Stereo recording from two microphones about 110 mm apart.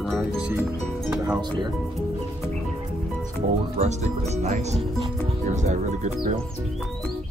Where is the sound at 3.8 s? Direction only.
90° right.